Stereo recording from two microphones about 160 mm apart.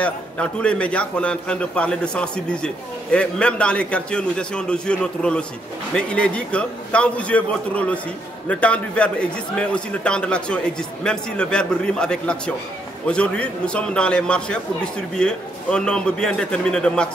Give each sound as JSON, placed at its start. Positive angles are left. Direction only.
{"t": 0.0, "sound": "a man's voice", "side_deg": 5}